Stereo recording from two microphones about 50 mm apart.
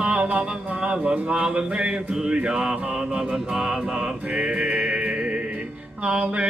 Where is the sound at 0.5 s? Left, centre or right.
Right.